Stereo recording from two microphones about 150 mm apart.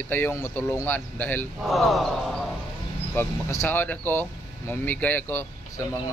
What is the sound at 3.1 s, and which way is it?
Speech, 15° left (ahead or behind).